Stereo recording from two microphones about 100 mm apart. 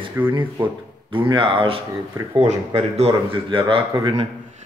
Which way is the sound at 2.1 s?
45° right (ahead or behind).